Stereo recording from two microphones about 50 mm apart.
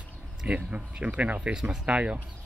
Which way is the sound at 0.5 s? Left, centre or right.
Right.